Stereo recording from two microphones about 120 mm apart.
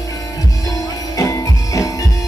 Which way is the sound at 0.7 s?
30° left (ahead or behind).